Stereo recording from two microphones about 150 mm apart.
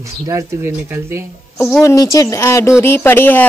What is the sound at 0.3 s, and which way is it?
Speech, 20° right (ahead or behind).